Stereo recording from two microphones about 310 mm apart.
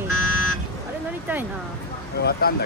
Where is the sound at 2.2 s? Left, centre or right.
Left.